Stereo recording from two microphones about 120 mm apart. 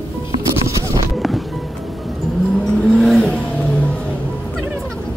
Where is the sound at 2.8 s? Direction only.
Centre (ahead or behind).